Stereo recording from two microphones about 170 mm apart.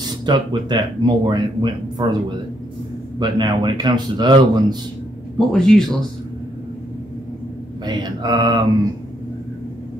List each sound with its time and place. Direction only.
0.2 s a man's voice: 25° right (ahead or behind)
5.5 s speech: 5° left (ahead or behind)
7.8 s a man's voice: 25° right (ahead or behind)